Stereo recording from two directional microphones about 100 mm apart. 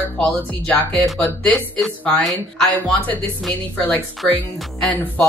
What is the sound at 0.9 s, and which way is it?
Speech, 5° left (ahead or behind).